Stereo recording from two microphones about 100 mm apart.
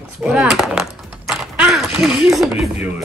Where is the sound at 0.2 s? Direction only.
5° right (ahead or behind).